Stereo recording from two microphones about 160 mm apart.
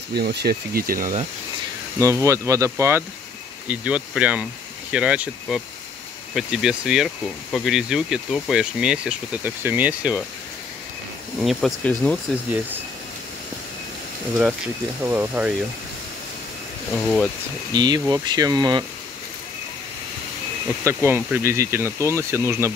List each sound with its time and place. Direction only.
0.1 s speech: 90° right; by 1.2 s 60° right (ahead or behind)
2.0 s speech: 20° right (ahead or behind)
3.6 s speech: 10° right (ahead or behind)
11.4 s speech: 5° left (ahead or behind)
15.0 s speech: 10° right (ahead or behind)
16.9 s speech: 5° left (ahead or behind)
17.7 s speech: 25° right (ahead or behind)
20.8 s speech: 15° right (ahead or behind)